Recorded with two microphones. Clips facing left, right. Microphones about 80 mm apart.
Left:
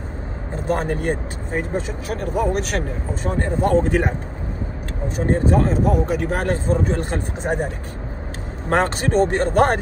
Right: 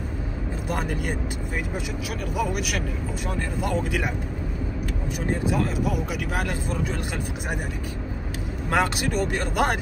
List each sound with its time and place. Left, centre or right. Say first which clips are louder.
0.7 s speech: left 8 dB; left
5.1 s speech: left 7 dB; left